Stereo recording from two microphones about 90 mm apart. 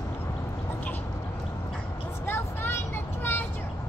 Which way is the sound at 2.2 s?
25° left (ahead or behind).